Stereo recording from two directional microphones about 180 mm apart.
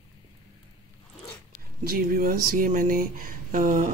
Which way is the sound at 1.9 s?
50° right (ahead or behind).